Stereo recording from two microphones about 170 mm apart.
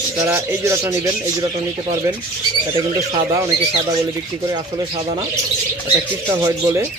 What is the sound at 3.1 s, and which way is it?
Speech, 20° right (ahead or behind).